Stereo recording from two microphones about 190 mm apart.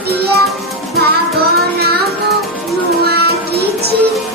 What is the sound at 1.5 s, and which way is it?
Child singing, 55° right (ahead or behind).